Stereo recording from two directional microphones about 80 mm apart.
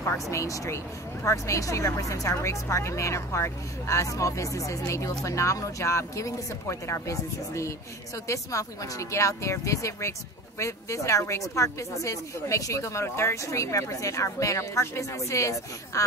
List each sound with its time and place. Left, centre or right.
0.0 s speech: left